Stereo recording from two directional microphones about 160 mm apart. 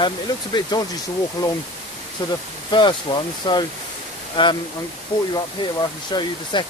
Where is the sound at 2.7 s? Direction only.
30° left (ahead or behind).